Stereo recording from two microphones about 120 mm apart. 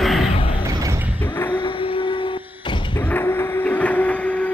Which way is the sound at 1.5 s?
45° left (ahead or behind).